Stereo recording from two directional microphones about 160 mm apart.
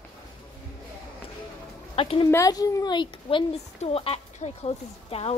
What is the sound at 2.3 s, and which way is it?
Speech, 20° left (ahead or behind).